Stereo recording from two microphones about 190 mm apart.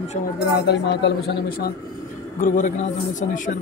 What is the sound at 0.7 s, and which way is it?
A man's voice, 65° left (ahead or behind).